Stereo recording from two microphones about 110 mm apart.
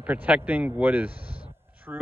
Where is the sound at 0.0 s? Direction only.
15° right (ahead or behind).